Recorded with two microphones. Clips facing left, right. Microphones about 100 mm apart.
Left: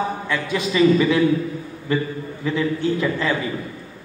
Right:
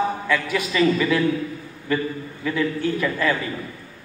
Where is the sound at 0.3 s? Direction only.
25° left (ahead or behind).